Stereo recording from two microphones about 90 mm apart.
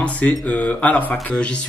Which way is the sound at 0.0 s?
15° left (ahead or behind).